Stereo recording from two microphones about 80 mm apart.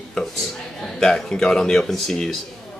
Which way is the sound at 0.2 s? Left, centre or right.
Centre.